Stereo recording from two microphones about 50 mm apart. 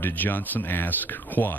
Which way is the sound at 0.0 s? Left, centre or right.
Left.